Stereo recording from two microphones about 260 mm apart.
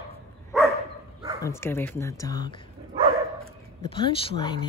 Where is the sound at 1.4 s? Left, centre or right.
Centre.